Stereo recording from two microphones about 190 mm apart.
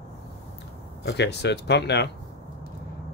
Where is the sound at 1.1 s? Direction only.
65° left (ahead or behind).